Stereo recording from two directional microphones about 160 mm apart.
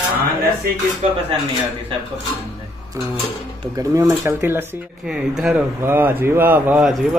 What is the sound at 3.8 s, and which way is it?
Speech, 20° right (ahead or behind).